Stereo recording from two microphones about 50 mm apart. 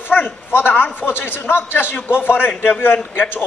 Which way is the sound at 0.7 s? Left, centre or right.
Left.